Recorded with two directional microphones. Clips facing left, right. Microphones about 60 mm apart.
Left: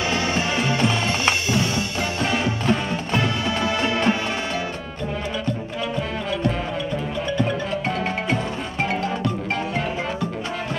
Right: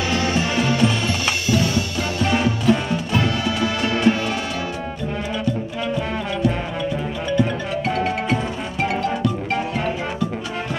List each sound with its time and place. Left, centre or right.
0.1 s music: left